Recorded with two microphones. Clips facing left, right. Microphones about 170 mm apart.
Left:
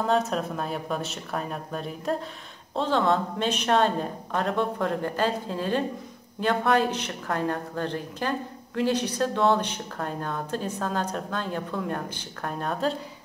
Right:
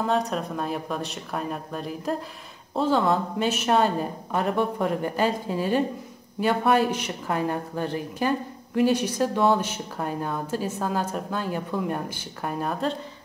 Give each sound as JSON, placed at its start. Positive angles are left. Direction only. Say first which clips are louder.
{"t": 0.0, "sound": "a woman's voice", "louder": "even", "side_deg": 0}